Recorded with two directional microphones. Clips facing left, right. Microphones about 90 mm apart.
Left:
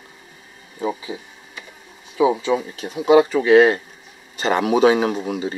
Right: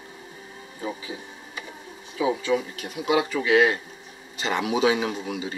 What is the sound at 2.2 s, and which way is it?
A man's voice, 25° left (ahead or behind).